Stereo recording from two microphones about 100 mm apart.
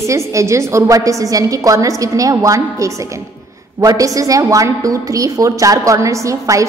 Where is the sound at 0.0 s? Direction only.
30° right (ahead or behind).